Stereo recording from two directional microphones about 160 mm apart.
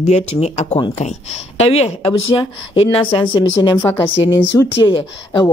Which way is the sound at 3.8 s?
10° left (ahead or behind).